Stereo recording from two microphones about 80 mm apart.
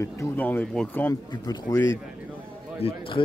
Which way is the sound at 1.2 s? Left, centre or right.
Left.